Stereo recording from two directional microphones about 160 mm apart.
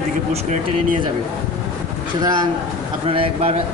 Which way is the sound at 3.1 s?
35° right (ahead or behind).